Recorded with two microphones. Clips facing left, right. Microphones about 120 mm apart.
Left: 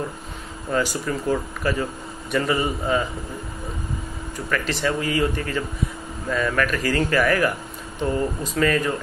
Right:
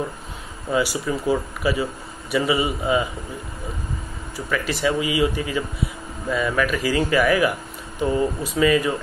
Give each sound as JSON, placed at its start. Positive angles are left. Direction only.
{"t": 0.7, "sound": "speech", "side_deg": -10}
{"t": 4.5, "sound": "speech", "side_deg": -10}